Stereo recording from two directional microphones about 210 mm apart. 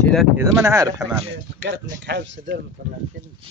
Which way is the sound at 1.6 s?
55° right (ahead or behind).